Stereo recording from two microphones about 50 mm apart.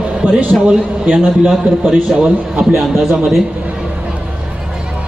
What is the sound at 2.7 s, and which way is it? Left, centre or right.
Speech, centre.